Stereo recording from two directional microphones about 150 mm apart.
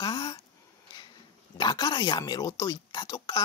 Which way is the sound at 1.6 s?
30° left (ahead or behind).